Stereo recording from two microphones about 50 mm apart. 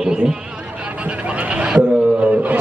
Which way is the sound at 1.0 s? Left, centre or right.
Right.